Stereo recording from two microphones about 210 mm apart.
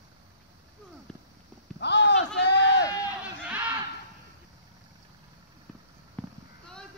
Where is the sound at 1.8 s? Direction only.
55° left (ahead or behind).